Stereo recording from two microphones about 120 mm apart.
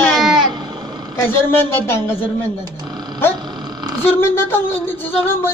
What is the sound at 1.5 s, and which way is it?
Speech, 20° left (ahead or behind).